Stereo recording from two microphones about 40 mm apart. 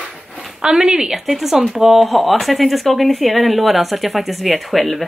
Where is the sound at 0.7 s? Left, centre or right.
Centre.